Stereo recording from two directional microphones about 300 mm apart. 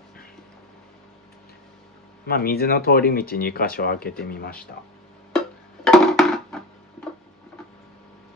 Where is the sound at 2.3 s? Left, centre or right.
Left.